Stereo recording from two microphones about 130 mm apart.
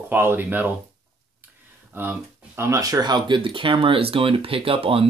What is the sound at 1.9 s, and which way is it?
Speech, 15° right (ahead or behind).